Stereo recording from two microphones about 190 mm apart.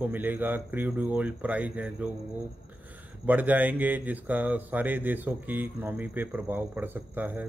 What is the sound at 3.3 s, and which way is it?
Speech, 10° right (ahead or behind).